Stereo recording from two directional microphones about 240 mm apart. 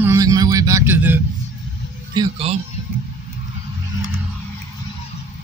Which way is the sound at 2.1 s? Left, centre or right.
Right.